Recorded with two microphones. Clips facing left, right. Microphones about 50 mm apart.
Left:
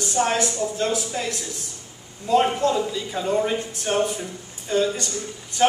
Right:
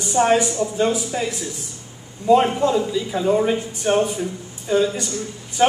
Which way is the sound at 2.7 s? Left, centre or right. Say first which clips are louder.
Right 4 dB; centre.